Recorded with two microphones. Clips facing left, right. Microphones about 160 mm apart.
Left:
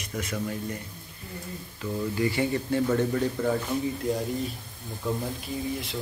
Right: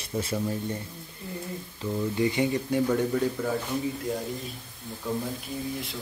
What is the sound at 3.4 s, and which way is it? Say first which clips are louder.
Speech: left 3 dB; 5° right (ahead or behind).